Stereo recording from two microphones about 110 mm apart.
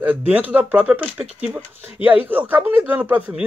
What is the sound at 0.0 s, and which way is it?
Speech, 15° right (ahead or behind).